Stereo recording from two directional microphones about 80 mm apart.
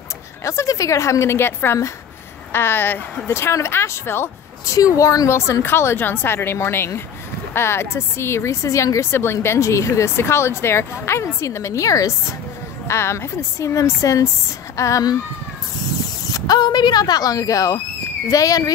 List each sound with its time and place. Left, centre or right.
0.4 s a woman's voice: left
4.7 s a woman's voice: left
16.3 s a woman's voice: left